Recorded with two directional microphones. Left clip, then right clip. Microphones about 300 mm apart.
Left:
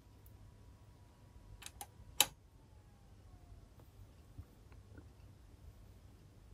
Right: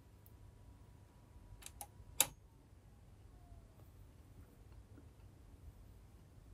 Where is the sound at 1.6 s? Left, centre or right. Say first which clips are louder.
Left 3 dB; centre.